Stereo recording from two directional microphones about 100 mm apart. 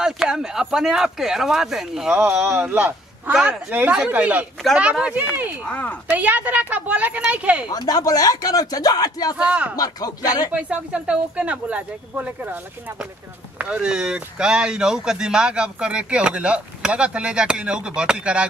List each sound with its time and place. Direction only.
0.0 s speech: 5° right (ahead or behind)
2.1 s speech: 20° right (ahead or behind)
5.7 s a woman's voice: 15° left (ahead or behind)
6.1 s speech: 15° right (ahead or behind)
7.6 s speech: 40° left (ahead or behind)
9.4 s speech: 10° right (ahead or behind)
9.8 s speech: 40° left (ahead or behind)
10.5 s speech: 10° right (ahead or behind)
13.6 s speech: 10° right (ahead or behind)